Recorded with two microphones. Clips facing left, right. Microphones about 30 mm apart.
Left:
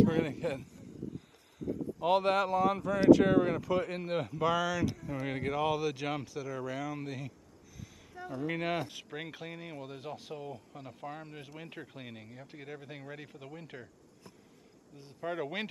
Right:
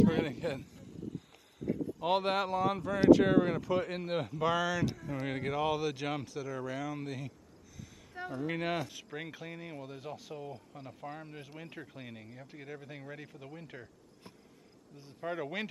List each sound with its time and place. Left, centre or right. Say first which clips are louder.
0.3 s speech: left 1 dB; centre
2.0 s speech: left 3 dB; centre
8.4 s speech: left 1 dB; centre
8.7 s speech: left 1 dB; left
15.2 s speech: left 1 dB; centre